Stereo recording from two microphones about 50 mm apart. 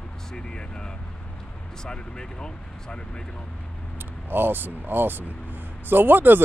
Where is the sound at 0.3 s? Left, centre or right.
Centre.